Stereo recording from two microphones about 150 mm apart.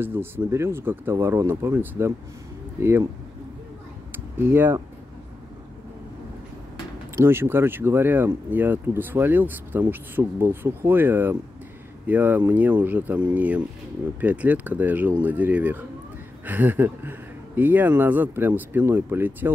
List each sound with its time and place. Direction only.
0.0 s speech: 15° right (ahead or behind)
4.1 s a sound: 15° right (ahead or behind)
7.2 s speech: 15° right (ahead or behind)